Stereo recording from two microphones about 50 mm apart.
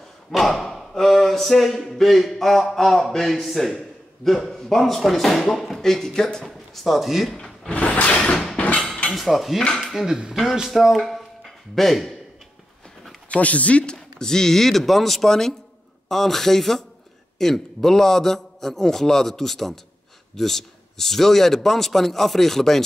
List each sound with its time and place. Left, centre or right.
0.3 s a sound: centre
1.9 s a man's voice: centre
7.3 s wood: centre
7.7 s a sound: left
9.1 s dishes: centre
9.8 s a man's voice: centre
13.3 s speech: left
14.2 s a man's voice: centre